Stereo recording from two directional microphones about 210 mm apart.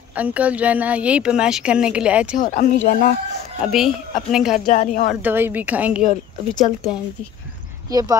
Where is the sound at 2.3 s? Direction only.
40° left (ahead or behind).